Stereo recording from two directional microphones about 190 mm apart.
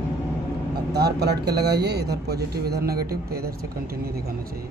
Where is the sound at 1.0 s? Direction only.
60° right (ahead or behind).